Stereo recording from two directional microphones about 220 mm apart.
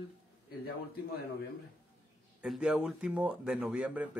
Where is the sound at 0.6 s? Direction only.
45° left (ahead or behind).